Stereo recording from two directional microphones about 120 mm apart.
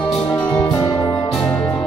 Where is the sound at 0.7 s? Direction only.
25° left (ahead or behind).